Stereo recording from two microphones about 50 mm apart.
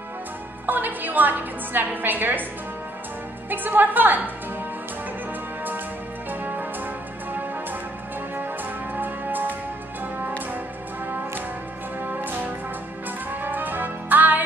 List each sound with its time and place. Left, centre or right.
0.7 s a woman's voice: right
3.4 s a woman's voice: right
6.4 s music: right
8.4 s music: right
12.0 s music: right